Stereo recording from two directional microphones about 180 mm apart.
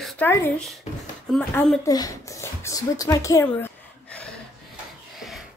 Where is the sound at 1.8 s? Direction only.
20° left (ahead or behind).